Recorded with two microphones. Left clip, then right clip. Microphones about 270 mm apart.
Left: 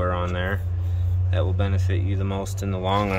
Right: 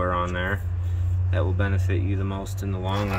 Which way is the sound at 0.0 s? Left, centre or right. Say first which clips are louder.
Right 1 dB; centre.